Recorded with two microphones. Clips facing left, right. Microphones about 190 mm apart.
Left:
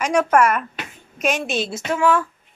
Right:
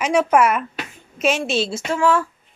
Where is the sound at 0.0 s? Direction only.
5° right (ahead or behind).